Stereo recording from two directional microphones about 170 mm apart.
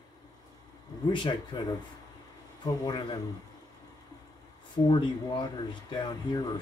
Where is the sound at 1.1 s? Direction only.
25° left (ahead or behind).